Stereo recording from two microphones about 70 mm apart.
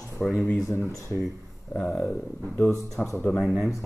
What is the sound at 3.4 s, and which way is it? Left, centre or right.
Speech, centre.